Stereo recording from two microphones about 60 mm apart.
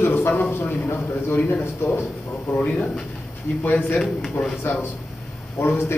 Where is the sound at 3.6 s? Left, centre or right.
Left.